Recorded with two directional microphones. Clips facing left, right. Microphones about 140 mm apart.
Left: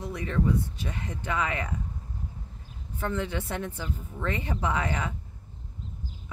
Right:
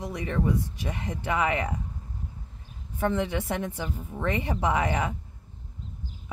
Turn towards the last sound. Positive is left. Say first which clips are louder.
# right 3 dB
turn(degrees=-20)  # may be behind; listen again after turning